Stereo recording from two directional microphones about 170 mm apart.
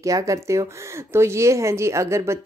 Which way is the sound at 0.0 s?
20° right (ahead or behind).